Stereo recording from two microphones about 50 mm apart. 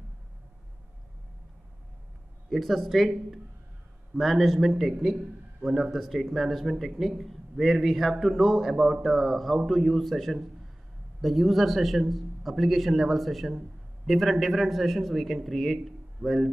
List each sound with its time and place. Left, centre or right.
2.5 s a man's voice: centre
4.1 s a man's voice: centre
4.9 s speech: centre
5.7 s a man's voice: centre